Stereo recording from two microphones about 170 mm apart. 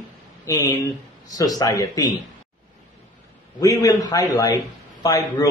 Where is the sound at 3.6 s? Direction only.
20° left (ahead or behind).